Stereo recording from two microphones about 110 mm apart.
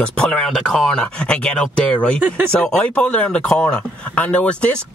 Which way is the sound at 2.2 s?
20° right (ahead or behind).